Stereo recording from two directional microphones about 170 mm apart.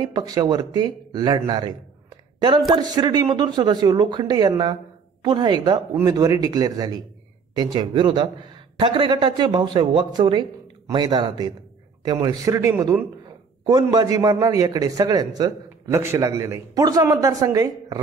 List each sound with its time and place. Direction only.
0.0 s a man's voice: 25° right (ahead or behind)
2.7 s a man's voice: 25° right (ahead or behind)